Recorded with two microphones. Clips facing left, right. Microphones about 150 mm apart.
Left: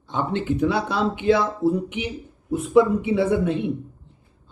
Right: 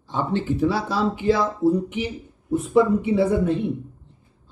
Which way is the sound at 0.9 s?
35° right (ahead or behind).